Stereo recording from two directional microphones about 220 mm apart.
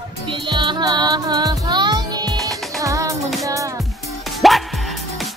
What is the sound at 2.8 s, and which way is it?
Music, 15° right (ahead or behind).